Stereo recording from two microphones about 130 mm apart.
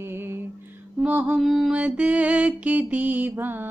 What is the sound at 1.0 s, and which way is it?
Female singing, 10° right (ahead or behind).